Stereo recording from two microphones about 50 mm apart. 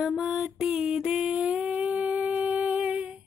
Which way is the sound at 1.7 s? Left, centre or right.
Right.